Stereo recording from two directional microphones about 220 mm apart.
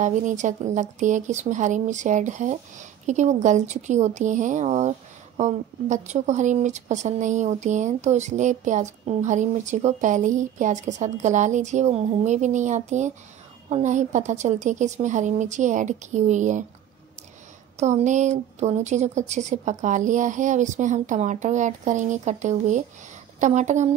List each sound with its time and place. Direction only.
0.0 s speech: 35° right (ahead or behind)
17.7 s speech: 30° right (ahead or behind)